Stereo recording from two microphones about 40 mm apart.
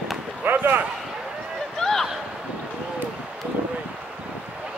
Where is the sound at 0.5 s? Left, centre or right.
Right.